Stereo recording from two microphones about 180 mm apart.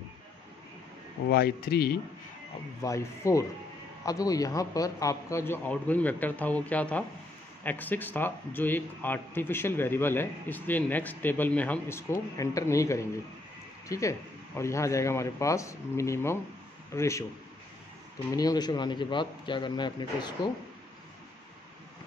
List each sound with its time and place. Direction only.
1.3 s speech: 60° left (ahead or behind)
2.8 s speech: 15° left (ahead or behind)
18.3 s a man's voice: 20° left (ahead or behind)